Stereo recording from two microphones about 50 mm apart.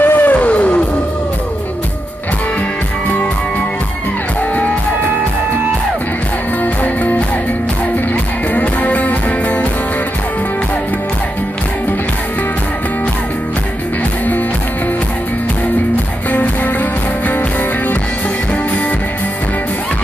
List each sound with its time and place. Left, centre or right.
0.0 s music: left
6.6 s music: left
8.5 s music: left